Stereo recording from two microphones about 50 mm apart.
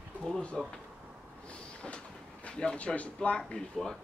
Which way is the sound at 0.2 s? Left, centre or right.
Centre.